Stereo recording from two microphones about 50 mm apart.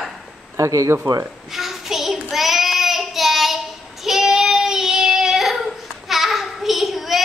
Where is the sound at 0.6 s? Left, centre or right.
Right.